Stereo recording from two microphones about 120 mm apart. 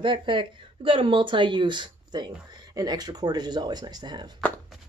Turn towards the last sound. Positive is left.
turn(degrees=-35)  # may be behind; listen again after turning